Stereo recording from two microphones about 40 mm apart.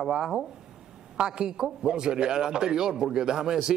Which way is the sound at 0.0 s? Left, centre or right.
Centre.